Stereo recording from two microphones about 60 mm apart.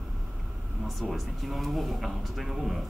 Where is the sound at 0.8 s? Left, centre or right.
Centre.